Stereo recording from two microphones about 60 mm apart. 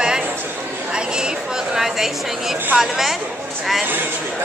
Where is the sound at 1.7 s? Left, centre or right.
Centre.